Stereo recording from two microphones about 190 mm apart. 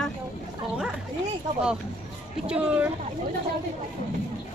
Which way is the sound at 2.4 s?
5° right (ahead or behind).